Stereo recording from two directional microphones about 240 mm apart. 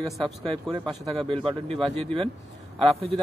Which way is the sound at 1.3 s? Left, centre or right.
Right.